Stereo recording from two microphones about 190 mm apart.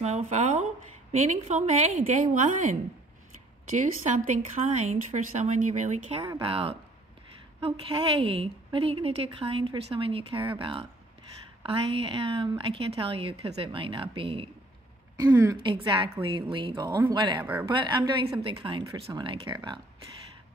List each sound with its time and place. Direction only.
0.0 s a woman's voice: 35° right (ahead or behind)
15.6 s a woman's voice: 25° right (ahead or behind)
17.4 s speech: 10° right (ahead or behind)
17.6 s a woman's voice: 25° right (ahead or behind)